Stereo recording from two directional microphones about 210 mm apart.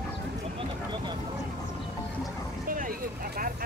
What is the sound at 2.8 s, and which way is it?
Vehicle, 40° right (ahead or behind).